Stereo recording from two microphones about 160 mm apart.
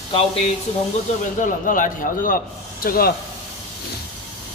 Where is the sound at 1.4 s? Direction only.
55° left (ahead or behind).